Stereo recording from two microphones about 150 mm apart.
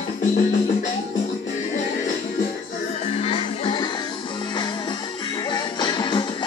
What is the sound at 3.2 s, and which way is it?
Music, 40° left (ahead or behind).